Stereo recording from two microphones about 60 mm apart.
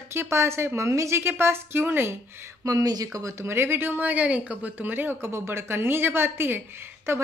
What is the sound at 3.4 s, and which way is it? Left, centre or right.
Speech, right.